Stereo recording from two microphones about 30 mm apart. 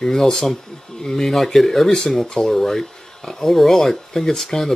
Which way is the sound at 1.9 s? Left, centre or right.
Centre.